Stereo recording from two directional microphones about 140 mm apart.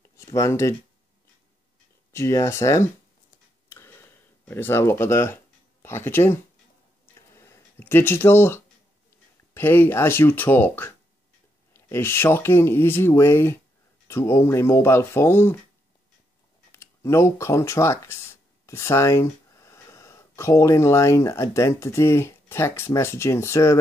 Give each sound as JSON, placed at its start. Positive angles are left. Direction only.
{"t": 0.2, "sound": "speech", "side_deg": 20}
{"t": 2.1, "sound": "speech", "side_deg": 20}
{"t": 3.6, "sound": "tick", "side_deg": 15}
{"t": 4.5, "sound": "speech", "side_deg": 15}
{"t": 7.2, "sound": "a sound", "side_deg": 20}
{"t": 9.5, "sound": "speech", "side_deg": 15}
{"t": 16.7, "sound": "speech", "side_deg": 20}